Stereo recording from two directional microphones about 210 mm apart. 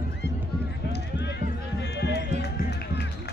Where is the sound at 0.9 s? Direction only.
55° left (ahead or behind).